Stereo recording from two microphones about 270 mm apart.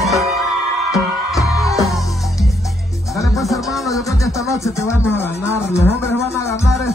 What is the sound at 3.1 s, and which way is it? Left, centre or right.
Music, centre.